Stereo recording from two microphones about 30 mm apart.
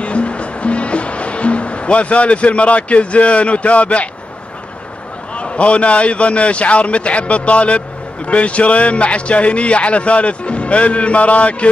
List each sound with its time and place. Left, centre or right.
0.0 s music: left
5.3 s a man's voice: left